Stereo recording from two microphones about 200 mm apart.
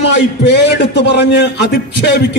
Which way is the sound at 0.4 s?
60° left (ahead or behind).